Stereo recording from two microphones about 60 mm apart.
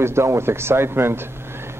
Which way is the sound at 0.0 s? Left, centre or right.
Right.